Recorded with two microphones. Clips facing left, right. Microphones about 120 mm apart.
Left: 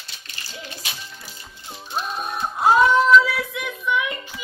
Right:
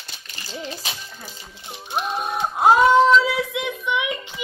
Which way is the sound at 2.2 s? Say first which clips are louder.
Right 4 dB; 20° right (ahead or behind).